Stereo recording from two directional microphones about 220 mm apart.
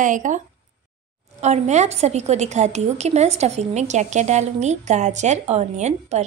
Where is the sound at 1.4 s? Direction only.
30° right (ahead or behind).